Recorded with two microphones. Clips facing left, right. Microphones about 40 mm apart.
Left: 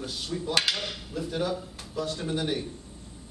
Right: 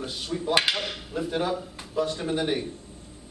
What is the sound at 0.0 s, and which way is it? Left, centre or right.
Speech, right.